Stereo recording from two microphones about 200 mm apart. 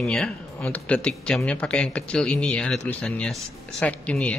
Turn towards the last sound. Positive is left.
turn(degrees=5)  # may be behind; listen again after turning